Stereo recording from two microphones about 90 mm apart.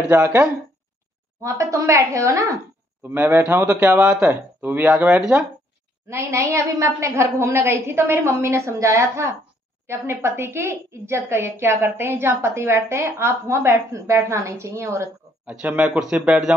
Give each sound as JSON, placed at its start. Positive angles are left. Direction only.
{"t": 0.1, "sound": "a woman's voice", "side_deg": -25}
{"t": 1.4, "sound": "a woman's voice", "side_deg": -35}
{"t": 3.0, "sound": "a woman's voice", "side_deg": -20}
{"t": 6.0, "sound": "a woman's voice", "side_deg": -30}
{"t": 15.4, "sound": "speech", "side_deg": -10}